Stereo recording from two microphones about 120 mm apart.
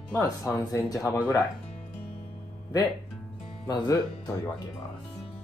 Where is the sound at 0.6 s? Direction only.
30° left (ahead or behind).